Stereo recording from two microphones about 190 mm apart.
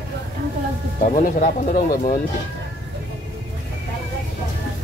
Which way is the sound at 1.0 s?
45° left (ahead or behind).